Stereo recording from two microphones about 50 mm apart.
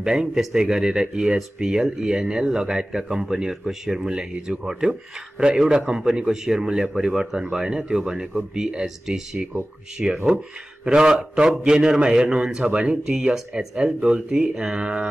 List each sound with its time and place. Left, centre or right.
0.0 s speech: centre
11.1 s mantra: centre
11.6 s speech: centre
14.4 s mantra: centre